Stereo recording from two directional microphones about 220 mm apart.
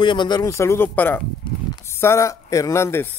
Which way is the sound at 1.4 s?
25° left (ahead or behind).